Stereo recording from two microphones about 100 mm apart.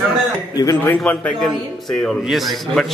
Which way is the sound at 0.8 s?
15° left (ahead or behind).